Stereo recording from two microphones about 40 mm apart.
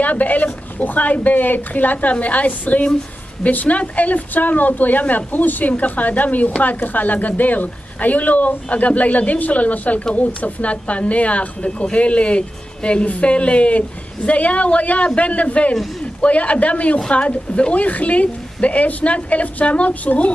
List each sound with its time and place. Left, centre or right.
0.0 s speech: left